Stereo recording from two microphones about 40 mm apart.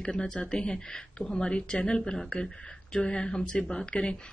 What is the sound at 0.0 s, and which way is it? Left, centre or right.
Speech, left.